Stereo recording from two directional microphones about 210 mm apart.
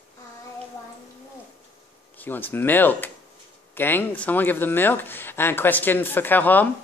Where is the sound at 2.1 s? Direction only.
10° left (ahead or behind).